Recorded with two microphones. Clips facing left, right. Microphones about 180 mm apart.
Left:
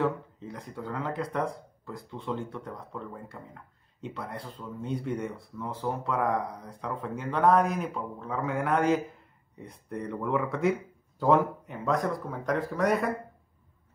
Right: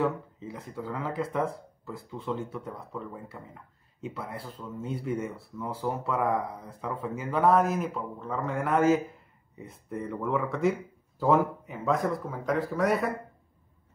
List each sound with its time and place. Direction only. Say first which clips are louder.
0.0 s speech: even; 5° right (ahead or behind)